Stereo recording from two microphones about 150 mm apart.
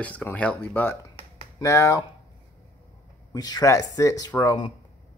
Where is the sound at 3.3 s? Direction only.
25° left (ahead or behind).